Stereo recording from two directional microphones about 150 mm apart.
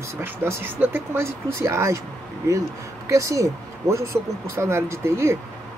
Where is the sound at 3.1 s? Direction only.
20° right (ahead or behind).